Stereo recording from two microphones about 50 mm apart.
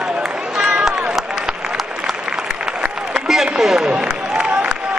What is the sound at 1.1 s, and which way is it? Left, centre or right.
Applause, centre.